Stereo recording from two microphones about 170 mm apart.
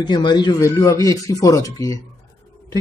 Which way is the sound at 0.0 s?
25° left (ahead or behind).